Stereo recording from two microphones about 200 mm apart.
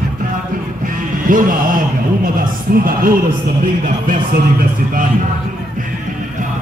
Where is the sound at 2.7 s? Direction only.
45° right (ahead or behind).